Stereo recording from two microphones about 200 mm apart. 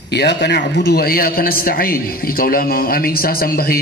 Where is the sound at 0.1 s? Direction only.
55° left (ahead or behind).